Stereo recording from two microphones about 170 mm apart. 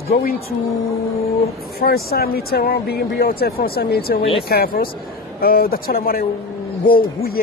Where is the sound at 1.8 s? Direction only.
65° left (ahead or behind).